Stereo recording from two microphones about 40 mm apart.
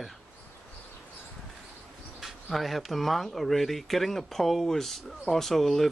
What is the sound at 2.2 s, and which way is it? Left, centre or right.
Speech, centre.